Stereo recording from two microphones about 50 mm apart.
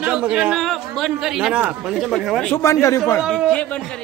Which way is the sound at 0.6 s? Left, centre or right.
Centre.